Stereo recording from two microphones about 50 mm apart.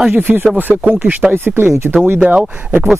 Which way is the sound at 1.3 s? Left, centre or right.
Right.